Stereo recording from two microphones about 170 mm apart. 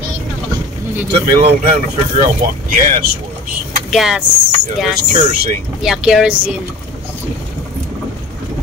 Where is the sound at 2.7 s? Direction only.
50° right (ahead or behind).